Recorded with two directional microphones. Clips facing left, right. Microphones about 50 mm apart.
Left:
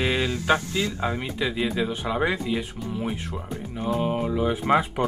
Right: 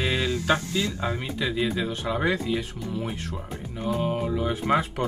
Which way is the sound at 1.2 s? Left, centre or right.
Centre.